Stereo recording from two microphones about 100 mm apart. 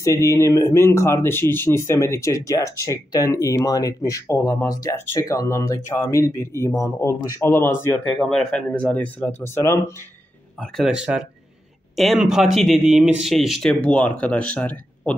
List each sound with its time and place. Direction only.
0.0 s speech: 30° left (ahead or behind)
8.0 s speech: 10° left (ahead or behind); by 9.9 s 25° left (ahead or behind)
10.6 s speech: centre (ahead or behind); by 15.1 s 15° left (ahead or behind)